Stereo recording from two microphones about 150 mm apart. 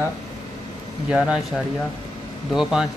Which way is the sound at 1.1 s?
5° right (ahead or behind).